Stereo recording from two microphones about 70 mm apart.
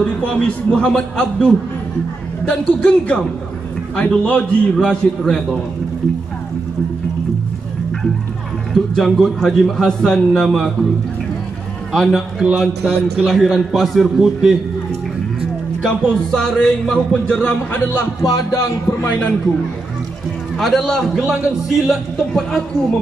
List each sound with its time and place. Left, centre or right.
0.0 s a man's voice: centre
4.7 s a man's voice: centre
8.7 s a man's voice: centre
11.9 s a man's voice: centre
12.4 s a man's voice: centre
13.2 s a man's voice: centre
16.3 s a man's voice: centre
18.2 s speech: left
18.9 s a man's voice: left
20.5 s a man's voice: centre
21.2 s a man's voice: centre
22.3 s a man's voice: centre